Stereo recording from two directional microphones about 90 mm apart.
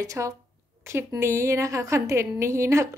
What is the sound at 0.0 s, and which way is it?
A woman's voice, 40° right (ahead or behind).